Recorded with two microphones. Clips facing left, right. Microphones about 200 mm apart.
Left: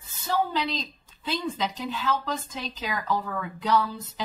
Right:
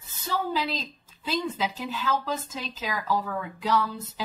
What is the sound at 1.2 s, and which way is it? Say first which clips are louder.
A woman's voice: right 1 dB; 5° right (ahead or behind).